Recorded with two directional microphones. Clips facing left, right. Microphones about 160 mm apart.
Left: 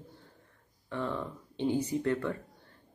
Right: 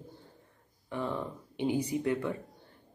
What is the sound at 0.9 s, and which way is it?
Speech, 15° right (ahead or behind).